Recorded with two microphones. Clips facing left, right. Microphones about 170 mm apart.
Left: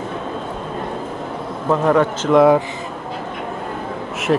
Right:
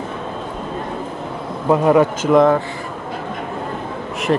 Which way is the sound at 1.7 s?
10° right (ahead or behind).